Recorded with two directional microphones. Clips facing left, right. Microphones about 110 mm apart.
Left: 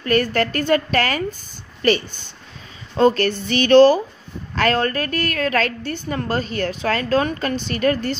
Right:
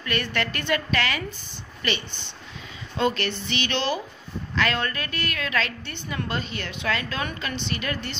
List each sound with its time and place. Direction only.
0.0 s a woman's voice: 40° left (ahead or behind)